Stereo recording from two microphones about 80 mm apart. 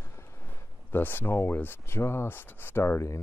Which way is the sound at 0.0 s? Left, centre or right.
Left.